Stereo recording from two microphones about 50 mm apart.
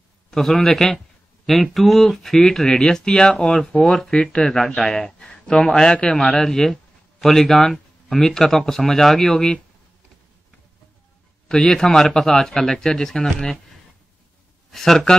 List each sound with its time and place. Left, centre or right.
0.3 s a man's voice: centre
4.2 s a man's voice: centre
4.5 s speech: centre
4.9 s a man's voice: centre
11.4 s a man's voice: centre
14.7 s a man's voice: centre